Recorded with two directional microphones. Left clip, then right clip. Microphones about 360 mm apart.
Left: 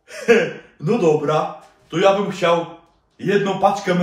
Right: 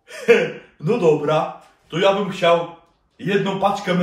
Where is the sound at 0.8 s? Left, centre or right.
Centre.